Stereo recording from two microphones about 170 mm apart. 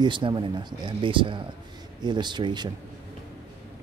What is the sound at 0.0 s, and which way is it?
Speech, 30° right (ahead or behind).